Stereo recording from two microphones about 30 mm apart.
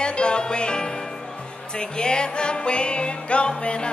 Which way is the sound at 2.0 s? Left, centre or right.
Left.